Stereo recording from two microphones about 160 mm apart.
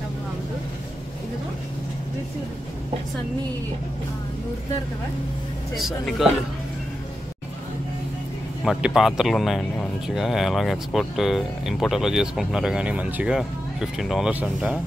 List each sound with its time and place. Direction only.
5.8 s speech: centre (ahead or behind)
8.6 s speech: centre (ahead or behind)